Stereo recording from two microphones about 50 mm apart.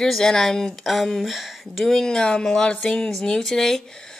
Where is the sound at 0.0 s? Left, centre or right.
Centre.